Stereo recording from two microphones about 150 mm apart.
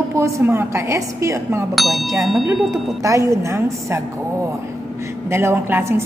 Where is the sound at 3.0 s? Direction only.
20° right (ahead or behind).